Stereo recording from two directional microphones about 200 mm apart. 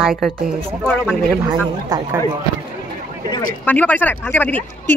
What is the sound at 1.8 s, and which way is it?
Speech, 20° right (ahead or behind).